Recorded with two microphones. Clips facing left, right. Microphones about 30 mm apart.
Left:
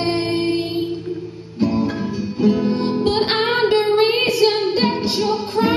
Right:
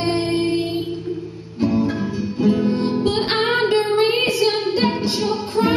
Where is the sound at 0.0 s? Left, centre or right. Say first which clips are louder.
Even; centre.